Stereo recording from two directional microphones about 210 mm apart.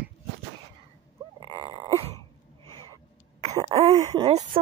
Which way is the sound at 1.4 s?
25° right (ahead or behind).